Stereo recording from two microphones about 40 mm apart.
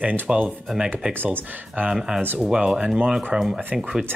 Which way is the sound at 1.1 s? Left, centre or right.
Right.